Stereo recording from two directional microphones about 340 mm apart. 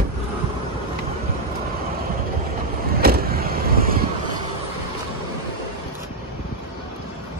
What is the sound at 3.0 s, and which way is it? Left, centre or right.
Vehicle, right.